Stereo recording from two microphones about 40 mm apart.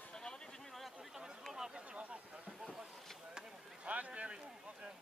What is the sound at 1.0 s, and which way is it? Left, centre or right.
Speech, centre.